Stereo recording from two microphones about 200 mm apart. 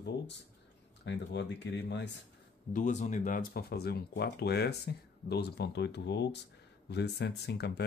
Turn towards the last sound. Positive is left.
turn(degrees=55)  # may be behind; listen again after turning